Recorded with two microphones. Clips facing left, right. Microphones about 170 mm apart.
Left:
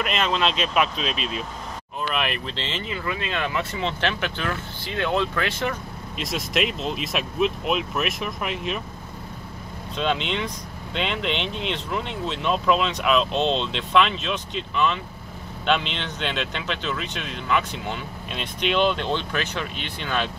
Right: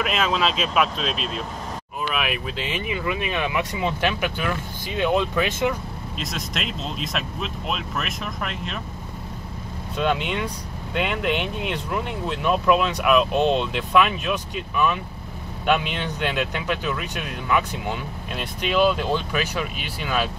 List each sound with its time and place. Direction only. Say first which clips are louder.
0.0 s speech: right 1 dB; 5° right (ahead or behind)
6.1 s speech: left 6 dB; 5° left (ahead or behind)
9.9 s speech: right 1 dB; 10° right (ahead or behind)